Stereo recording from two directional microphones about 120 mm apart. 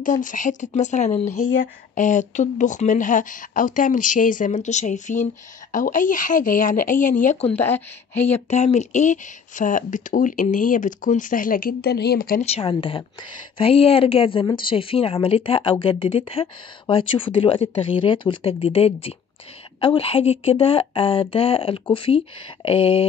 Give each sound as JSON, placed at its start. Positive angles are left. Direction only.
{"t": 0.0, "sound": "speech", "side_deg": 90}
{"t": 7.5, "sound": "speech", "side_deg": 15}
{"t": 8.5, "sound": "speech", "side_deg": 70}
{"t": 12.5, "sound": "speech", "side_deg": 45}